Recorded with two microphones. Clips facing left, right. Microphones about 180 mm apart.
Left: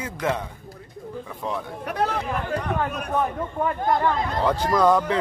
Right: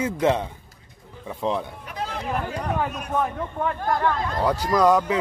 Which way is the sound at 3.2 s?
5° left (ahead or behind).